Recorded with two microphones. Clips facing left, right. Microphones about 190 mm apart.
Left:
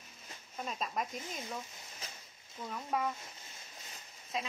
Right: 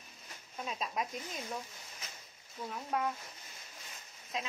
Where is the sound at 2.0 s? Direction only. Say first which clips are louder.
Left 3 dB; 35° left (ahead or behind).